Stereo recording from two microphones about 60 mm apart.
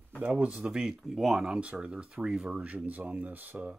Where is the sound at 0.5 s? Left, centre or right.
Centre.